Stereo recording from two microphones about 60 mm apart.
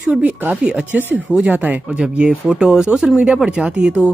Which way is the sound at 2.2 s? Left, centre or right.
Centre.